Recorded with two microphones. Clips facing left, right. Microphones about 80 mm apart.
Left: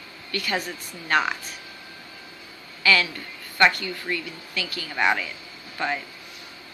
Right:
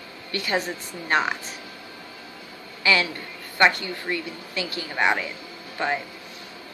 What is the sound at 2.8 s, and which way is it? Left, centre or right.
A woman's voice, right.